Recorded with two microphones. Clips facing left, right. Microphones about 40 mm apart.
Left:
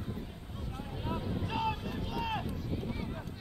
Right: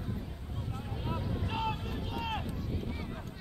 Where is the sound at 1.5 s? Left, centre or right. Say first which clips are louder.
Left 1 dB; right.